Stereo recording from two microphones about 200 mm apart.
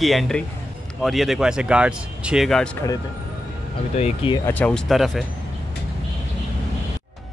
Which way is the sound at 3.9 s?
30° left (ahead or behind).